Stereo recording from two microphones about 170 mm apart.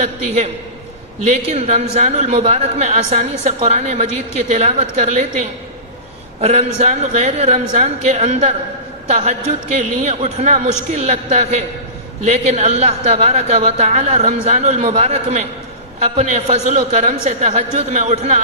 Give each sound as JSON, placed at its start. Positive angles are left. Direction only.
{"t": 0.0, "sound": "a woman's voice", "side_deg": -40}
{"t": 1.5, "sound": "a woman's voice", "side_deg": -40}
{"t": 6.4, "sound": "a woman's voice", "side_deg": -40}